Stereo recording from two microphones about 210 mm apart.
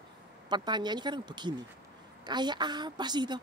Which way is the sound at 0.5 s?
20° right (ahead or behind).